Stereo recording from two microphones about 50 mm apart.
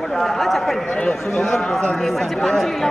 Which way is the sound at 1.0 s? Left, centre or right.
Centre.